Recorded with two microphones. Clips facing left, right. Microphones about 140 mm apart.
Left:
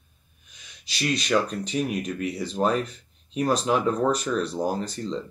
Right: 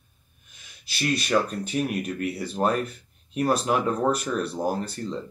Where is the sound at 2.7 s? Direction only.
55° right (ahead or behind).